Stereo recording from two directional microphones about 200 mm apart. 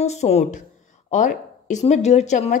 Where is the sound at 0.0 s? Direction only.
35° left (ahead or behind).